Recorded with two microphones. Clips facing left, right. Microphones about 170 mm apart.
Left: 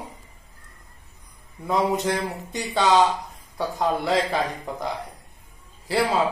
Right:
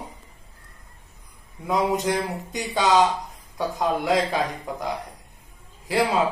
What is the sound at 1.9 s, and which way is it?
A man's voice, 15° right (ahead or behind).